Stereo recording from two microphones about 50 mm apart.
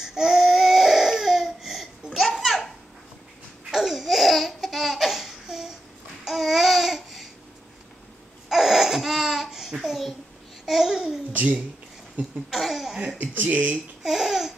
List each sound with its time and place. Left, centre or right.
0.0 s baby cry: centre
3.7 s laughter: centre
6.2 s babbling: centre
8.5 s laughter: centre
9.8 s babbling: centre
11.3 s speech: right
12.4 s cough: centre
13.2 s speech: right
14.0 s laughter: centre